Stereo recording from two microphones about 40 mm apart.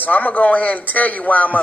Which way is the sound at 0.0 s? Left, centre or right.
Left.